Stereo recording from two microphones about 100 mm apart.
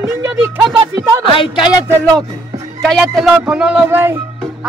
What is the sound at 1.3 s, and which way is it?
Speech, 55° left (ahead or behind).